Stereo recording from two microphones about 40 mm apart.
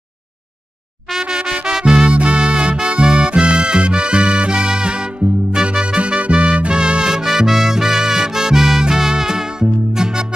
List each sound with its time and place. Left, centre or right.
1.2 s music: centre
1.7 s music: centre
2.0 s music: right